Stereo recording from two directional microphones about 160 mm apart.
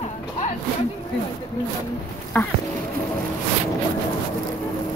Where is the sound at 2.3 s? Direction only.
10° left (ahead or behind).